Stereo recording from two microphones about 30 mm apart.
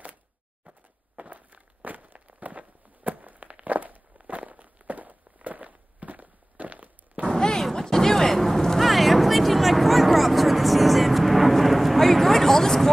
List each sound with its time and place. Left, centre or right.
1.1 s walk: right
2.2 s walk: right
7.3 s a sound: centre
8.7 s vehicle: centre